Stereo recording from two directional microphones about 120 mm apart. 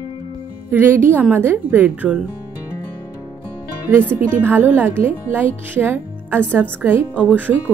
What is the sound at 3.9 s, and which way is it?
Speech, 15° right (ahead or behind).